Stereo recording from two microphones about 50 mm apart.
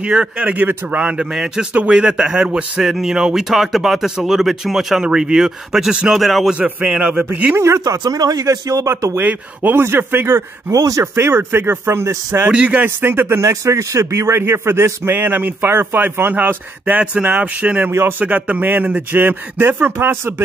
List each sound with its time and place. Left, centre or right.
0.0 s a man's voice: right
1.7 s speech: right
2.0 s a man's voice: centre
6.0 s a man's voice: centre
6.6 s speech: centre
7.5 s speech: right
9.2 s speech: right
10.7 s speech: right
11.3 s speech: right
12.4 s speech: right
12.8 s speech: right
13.4 s speech: right
17.0 s a man's voice: right